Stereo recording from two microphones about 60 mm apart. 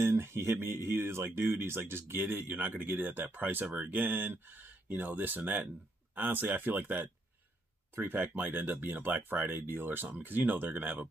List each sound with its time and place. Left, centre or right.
0.0 s speech: right